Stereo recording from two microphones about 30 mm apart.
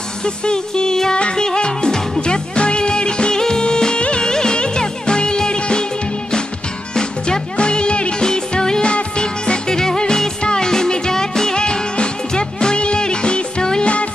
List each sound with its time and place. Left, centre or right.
0.2 s speech: left
1.1 s music: left
3.6 s music of bollywood: left
4.2 s music: left
7.0 s music: left
8.2 s music: left